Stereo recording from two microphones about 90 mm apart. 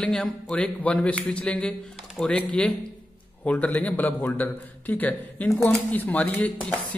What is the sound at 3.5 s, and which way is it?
A man's voice, 15° left (ahead or behind).